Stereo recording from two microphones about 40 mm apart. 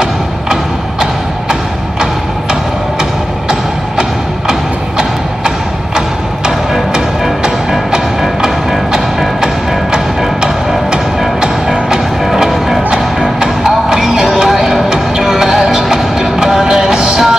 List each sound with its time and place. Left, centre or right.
0.0 s thump: centre
4.5 s wood block: centre
5.9 s music: centre
11.4 s music: centre
12.3 s music: centre
12.9 s music: centre